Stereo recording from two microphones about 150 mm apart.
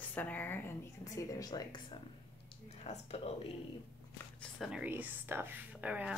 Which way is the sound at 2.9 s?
45° left (ahead or behind).